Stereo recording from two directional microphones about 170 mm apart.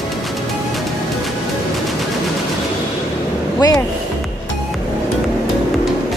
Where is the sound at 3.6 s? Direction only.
20° left (ahead or behind).